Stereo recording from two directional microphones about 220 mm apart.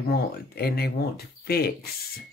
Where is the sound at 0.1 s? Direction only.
45° left (ahead or behind).